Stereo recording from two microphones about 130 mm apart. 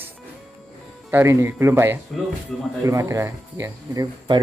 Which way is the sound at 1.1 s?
20° right (ahead or behind).